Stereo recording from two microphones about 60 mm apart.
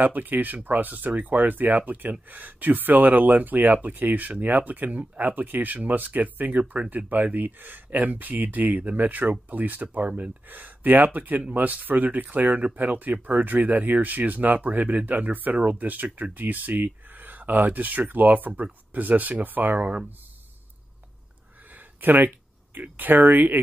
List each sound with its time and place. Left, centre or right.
0.0 s speech: right
21.7 s a sound: right
22.8 s speech: right